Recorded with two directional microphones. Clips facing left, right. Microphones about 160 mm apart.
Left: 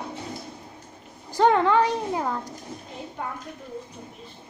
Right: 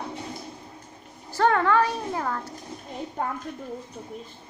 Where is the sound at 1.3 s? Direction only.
15° left (ahead or behind).